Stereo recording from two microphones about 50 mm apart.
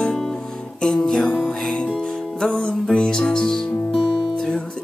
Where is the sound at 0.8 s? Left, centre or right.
Centre.